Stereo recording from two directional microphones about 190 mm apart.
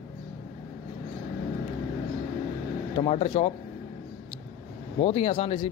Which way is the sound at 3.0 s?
35° left (ahead or behind).